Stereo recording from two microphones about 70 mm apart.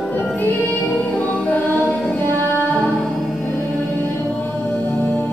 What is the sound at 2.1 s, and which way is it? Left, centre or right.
Music, left.